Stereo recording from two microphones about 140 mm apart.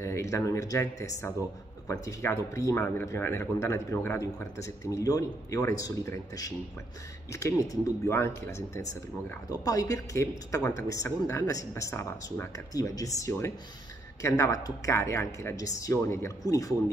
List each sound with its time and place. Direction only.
0.0 s speech: 20° left (ahead or behind)